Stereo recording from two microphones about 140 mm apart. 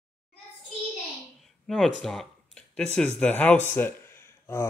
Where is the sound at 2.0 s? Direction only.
5° left (ahead or behind).